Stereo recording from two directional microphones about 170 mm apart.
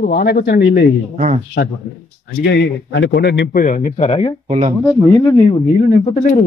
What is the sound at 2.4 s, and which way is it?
A man's voice, 85° left.